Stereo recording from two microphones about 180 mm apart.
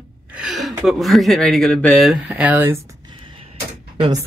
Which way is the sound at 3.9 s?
30° right (ahead or behind).